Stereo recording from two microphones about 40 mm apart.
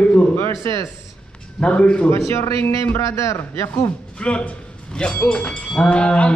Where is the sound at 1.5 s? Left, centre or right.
Left.